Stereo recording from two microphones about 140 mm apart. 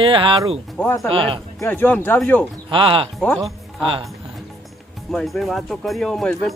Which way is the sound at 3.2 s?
Centre (ahead or behind).